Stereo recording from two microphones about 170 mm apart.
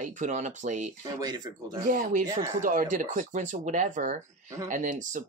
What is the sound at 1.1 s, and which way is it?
Speech, 25° right (ahead or behind).